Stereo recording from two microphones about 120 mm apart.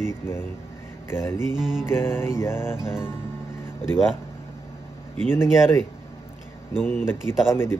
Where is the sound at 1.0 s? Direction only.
20° left (ahead or behind).